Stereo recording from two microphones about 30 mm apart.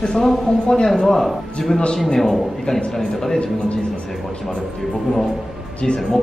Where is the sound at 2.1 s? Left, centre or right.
Centre.